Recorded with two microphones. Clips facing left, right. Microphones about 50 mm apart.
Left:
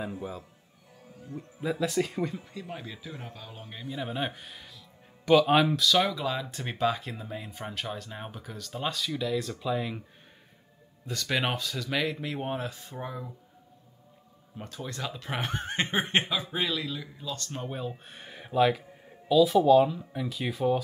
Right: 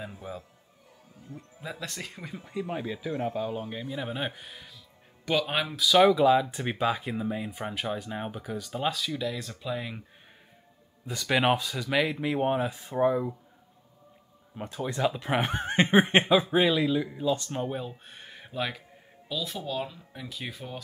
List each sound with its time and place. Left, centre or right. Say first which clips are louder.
0.0 s speech: left 3 dB; centre
2.3 s speech: right 6 dB; centre
5.8 s speech: right 6 dB; centre
11.1 s speech: right 5 dB; centre
14.6 s speech: right 8 dB; centre
17.6 s speech: right 1 dB; centre